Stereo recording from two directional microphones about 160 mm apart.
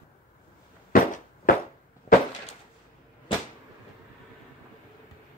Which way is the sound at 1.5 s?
60° left (ahead or behind).